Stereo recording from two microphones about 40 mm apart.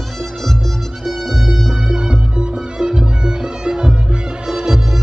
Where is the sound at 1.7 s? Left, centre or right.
Right.